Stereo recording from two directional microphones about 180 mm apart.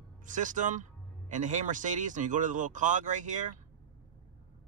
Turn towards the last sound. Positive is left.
turn(degrees=-45)  # may be behind; listen again after turning